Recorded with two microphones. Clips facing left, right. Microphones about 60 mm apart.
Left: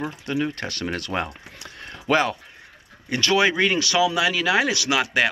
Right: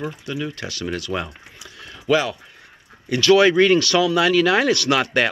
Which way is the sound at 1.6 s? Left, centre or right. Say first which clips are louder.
Left 1 dB; left.